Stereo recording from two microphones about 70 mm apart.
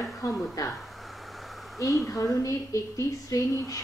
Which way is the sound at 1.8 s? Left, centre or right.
Left.